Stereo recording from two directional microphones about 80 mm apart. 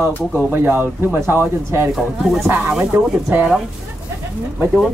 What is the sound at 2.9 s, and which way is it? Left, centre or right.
Speech, right.